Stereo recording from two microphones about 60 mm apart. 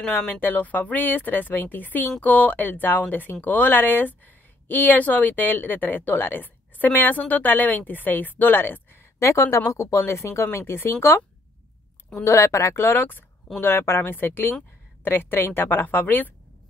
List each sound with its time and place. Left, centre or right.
0.4 s speech: left
9.2 s speech: left
12.3 s speech: left
12.8 s speech: left